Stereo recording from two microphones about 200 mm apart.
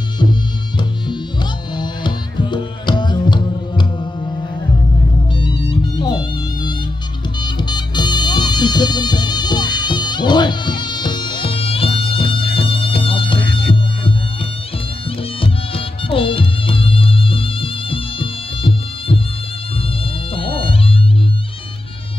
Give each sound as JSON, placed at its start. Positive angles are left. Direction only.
{"t": 1.8, "sound": "music", "side_deg": 20}
{"t": 5.4, "sound": "music", "side_deg": 25}
{"t": 15.4, "sound": "music", "side_deg": 25}
{"t": 20.3, "sound": "music", "side_deg": 25}